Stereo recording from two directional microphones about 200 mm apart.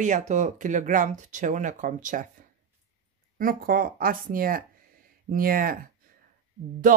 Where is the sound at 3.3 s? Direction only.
45° right (ahead or behind).